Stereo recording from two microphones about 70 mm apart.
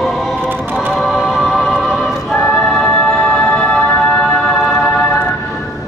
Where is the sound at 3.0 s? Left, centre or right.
Centre.